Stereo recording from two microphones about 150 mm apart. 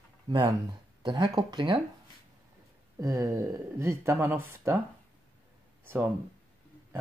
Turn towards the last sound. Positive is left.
turn(degrees=-15)  # may be behind; listen again after turning